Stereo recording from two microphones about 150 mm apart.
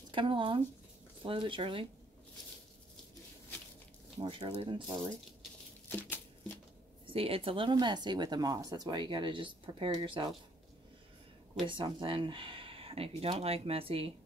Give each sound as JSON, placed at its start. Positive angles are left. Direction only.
{"t": 0.1, "sound": "speech", "side_deg": -35}
{"t": 4.2, "sound": "speech", "side_deg": -35}
{"t": 5.9, "sound": "a sound", "side_deg": 15}
{"t": 7.1, "sound": "speech", "side_deg": -40}
{"t": 11.6, "sound": "speech", "side_deg": -35}